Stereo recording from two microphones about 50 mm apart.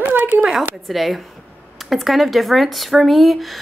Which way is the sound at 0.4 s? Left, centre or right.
Centre.